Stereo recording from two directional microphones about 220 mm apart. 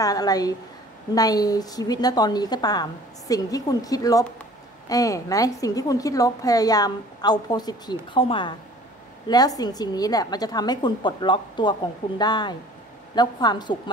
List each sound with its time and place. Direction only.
0.0 s a woman's voice: 15° left (ahead or behind)